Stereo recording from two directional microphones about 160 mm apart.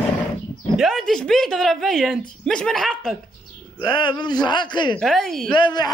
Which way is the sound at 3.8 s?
30° left (ahead or behind).